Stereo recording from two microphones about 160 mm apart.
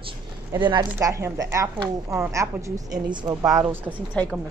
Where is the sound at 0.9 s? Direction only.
20° right (ahead or behind).